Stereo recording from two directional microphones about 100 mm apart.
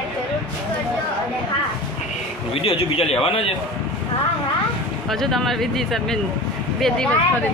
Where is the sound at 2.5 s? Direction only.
70° left (ahead or behind).